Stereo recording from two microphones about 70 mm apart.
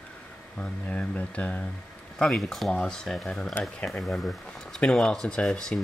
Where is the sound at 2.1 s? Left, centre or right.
Centre.